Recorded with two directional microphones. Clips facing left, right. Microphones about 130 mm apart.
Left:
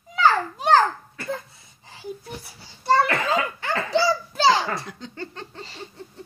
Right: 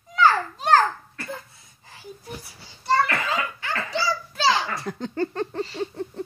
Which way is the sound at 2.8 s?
30° left (ahead or behind).